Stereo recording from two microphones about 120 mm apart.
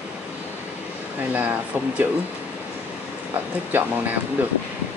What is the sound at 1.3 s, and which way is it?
Speech, 15° right (ahead or behind).